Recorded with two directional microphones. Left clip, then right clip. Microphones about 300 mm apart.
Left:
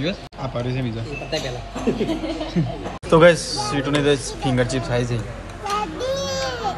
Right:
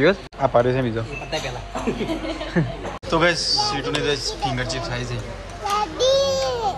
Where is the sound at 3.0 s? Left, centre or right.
Centre.